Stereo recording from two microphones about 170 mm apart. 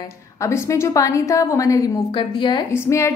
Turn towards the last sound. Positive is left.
turn(degrees=15)  # may be behind; listen again after turning